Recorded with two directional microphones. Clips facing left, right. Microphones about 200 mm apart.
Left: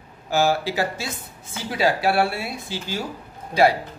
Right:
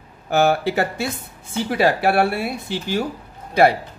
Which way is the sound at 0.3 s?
60° right (ahead or behind).